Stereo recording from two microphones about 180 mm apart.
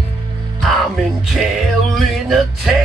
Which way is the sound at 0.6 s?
Centre (ahead or behind).